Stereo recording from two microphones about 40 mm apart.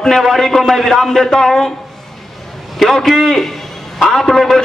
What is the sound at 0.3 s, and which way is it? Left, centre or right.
A man's voice, centre.